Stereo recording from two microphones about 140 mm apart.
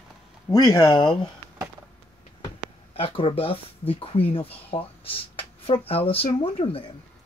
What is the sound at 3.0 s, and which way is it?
Speech, 40° left (ahead or behind).